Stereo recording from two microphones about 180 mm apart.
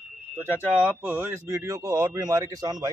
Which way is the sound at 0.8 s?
10° right (ahead or behind).